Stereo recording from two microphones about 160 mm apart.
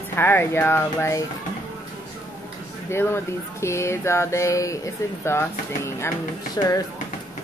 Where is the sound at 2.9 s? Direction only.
15° left (ahead or behind).